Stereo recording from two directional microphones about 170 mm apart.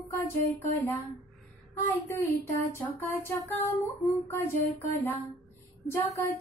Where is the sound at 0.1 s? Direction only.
20° left (ahead or behind).